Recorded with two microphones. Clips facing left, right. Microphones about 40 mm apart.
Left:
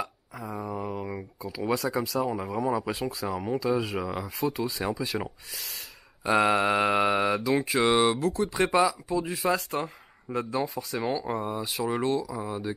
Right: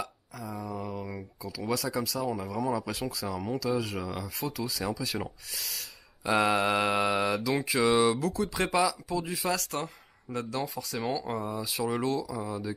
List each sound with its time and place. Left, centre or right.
0.0 s a sound: left
1.6 s speech: left
5.0 s mantra: centre
9.5 s mantra: centre
10.8 s speech: centre
11.6 s mantra: centre
12.2 s speech: left